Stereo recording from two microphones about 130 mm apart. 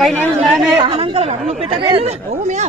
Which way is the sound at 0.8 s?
40° right (ahead or behind).